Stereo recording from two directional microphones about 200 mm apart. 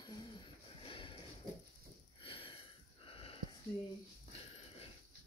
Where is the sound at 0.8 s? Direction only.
25° left (ahead or behind).